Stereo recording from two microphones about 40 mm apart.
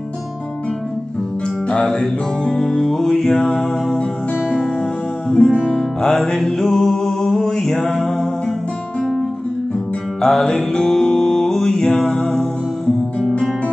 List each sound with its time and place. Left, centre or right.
1.9 s music: left
5.3 s music: left
6.3 s music: centre
6.7 s music: centre
10.2 s mantra: centre
12.1 s music: centre